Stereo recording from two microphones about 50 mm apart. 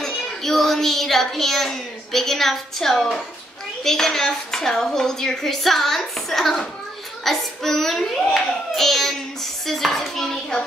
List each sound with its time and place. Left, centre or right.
0.0 s child singing: centre
3.8 s a child's voice: centre